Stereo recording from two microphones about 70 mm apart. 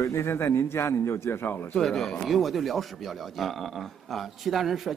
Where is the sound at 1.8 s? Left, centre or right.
Centre.